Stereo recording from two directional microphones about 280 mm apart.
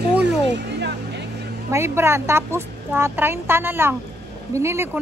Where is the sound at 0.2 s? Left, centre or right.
Right.